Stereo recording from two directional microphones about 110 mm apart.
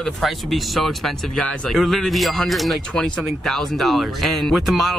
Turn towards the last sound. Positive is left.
turn(degrees=0)  # may be behind; listen again after turning